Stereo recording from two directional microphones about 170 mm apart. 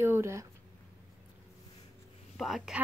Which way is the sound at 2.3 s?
Centre (ahead or behind).